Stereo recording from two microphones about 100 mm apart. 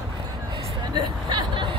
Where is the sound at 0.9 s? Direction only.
50° right (ahead or behind).